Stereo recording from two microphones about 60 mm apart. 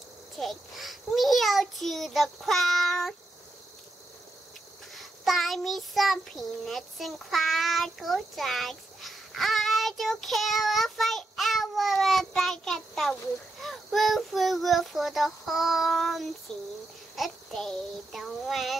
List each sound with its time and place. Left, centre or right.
0.4 s a child's voice: centre
4.9 s child singing: centre
13.6 s a child's voice: centre